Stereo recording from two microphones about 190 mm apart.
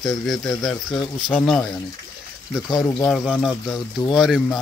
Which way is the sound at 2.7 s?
20° left (ahead or behind).